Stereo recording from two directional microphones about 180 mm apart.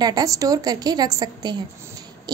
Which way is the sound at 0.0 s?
20° right (ahead or behind).